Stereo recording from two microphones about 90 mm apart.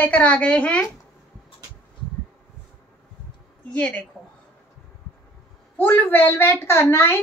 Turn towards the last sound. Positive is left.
turn(degrees=30)  # may be behind; listen again after turning